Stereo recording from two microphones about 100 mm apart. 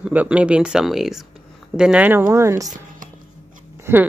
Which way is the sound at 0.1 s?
15° right (ahead or behind).